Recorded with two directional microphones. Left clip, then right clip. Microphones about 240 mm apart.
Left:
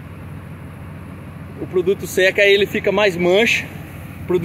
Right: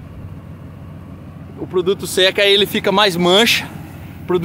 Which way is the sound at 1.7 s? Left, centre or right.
Centre.